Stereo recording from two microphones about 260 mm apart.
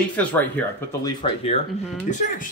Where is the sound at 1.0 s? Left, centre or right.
Left.